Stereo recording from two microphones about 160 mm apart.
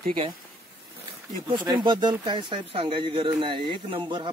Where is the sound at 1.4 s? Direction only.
30° right (ahead or behind).